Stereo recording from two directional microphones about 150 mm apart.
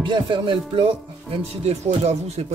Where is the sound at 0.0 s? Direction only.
35° right (ahead or behind).